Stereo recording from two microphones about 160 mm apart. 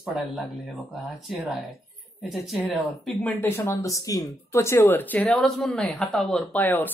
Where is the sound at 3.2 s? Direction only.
15° left (ahead or behind).